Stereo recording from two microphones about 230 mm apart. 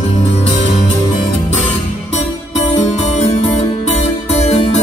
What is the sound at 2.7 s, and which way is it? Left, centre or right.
Music, left.